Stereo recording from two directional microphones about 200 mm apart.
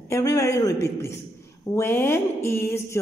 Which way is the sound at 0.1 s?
15° left (ahead or behind).